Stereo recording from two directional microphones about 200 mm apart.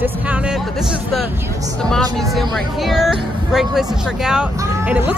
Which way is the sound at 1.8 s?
Centre (ahead or behind).